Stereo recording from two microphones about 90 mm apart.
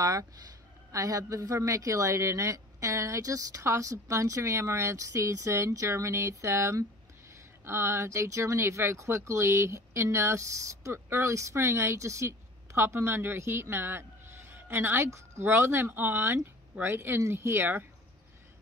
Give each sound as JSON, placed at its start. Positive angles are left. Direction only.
{"t": 0.0, "sound": "speech", "side_deg": -40}